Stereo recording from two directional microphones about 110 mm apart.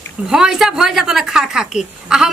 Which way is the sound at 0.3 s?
5° right (ahead or behind).